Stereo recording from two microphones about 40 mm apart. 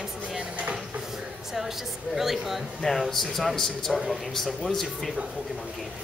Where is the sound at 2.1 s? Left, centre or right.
Centre.